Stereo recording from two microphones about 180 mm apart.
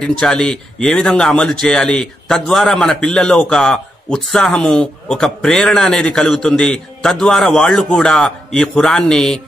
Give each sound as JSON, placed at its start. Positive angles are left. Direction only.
{"t": 0.2, "sound": "a man's voice", "side_deg": 5}